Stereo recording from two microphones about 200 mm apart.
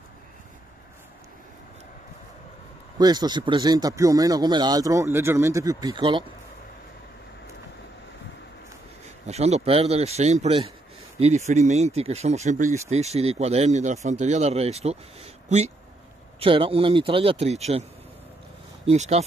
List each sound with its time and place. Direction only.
3.0 s speech: 20° right (ahead or behind)
9.0 s speech: 35° right (ahead or behind)
18.9 s speech: 35° right (ahead or behind)